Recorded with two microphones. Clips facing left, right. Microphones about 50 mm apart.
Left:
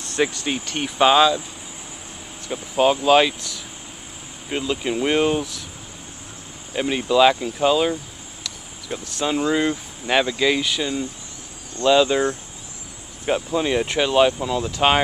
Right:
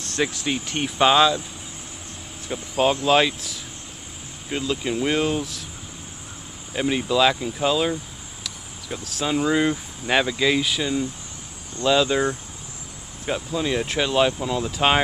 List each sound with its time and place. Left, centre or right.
0.0 s speech: centre
2.4 s speech: centre
4.5 s speech: centre
6.7 s speech: centre
8.9 s speech: centre
13.2 s speech: centre
13.8 s speech: centre